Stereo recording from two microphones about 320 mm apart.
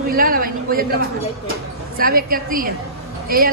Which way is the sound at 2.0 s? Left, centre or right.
Right.